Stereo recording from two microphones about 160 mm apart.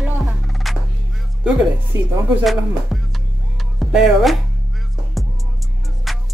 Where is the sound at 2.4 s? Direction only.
Centre (ahead or behind).